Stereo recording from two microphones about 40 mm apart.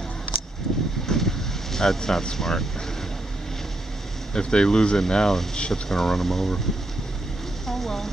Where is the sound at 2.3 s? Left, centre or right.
Centre.